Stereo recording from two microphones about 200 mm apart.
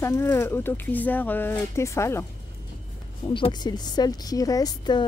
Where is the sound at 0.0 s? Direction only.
10° left (ahead or behind).